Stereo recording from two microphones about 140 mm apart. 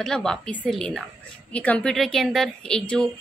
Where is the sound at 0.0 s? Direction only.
5° left (ahead or behind).